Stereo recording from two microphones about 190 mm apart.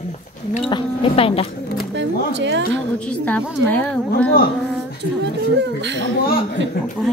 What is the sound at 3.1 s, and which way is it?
Speech, 10° left (ahead or behind).